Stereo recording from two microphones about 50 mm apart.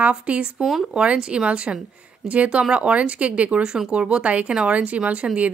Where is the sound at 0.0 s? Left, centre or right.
Right.